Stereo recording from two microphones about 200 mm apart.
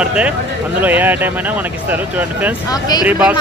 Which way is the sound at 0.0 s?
5° right (ahead or behind).